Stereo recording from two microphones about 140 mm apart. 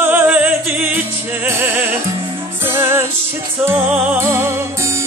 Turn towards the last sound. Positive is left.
turn(degrees=-20)  # may be behind; listen again after turning